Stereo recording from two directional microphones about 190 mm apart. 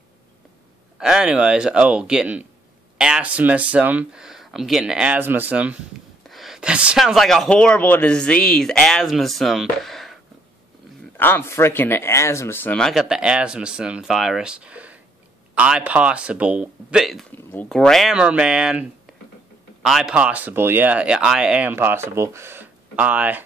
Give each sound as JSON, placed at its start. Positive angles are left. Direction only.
{"t": 0.9, "sound": "speech", "side_deg": -5}
{"t": 11.1, "sound": "speech", "side_deg": 10}